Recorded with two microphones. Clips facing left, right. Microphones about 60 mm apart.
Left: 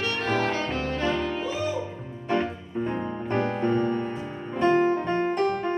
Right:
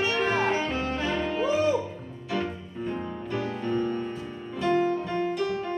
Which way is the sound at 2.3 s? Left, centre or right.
Left.